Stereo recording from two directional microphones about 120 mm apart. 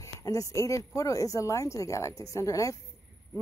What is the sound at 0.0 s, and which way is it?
Speech, 25° left (ahead or behind).